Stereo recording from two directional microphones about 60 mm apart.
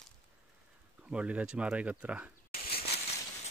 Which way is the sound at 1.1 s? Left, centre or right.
Centre.